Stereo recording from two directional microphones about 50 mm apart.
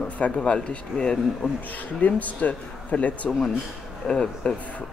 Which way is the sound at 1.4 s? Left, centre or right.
Left.